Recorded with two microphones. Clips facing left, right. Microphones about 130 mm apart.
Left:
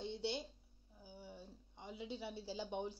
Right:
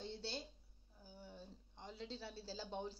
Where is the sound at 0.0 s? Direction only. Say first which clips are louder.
Left 5 dB; 15° left (ahead or behind).